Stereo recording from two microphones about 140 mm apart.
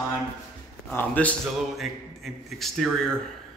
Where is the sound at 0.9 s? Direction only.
10° left (ahead or behind).